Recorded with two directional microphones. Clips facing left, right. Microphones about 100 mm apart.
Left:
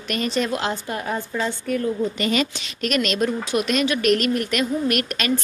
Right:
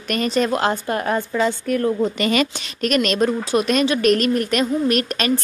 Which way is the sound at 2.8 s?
40° right (ahead or behind).